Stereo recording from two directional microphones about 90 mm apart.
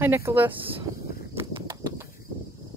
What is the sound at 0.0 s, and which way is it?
Speech, 25° right (ahead or behind).